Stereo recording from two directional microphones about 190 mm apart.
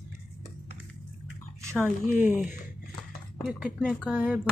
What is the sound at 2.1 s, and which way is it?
Speech, 10° right (ahead or behind).